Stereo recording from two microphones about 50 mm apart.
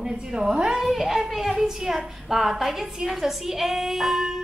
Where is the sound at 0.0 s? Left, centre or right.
Centre.